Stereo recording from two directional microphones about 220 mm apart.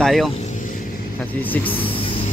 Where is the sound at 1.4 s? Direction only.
10° left (ahead or behind).